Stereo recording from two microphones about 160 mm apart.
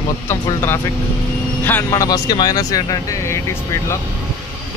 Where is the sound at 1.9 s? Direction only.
25° left (ahead or behind).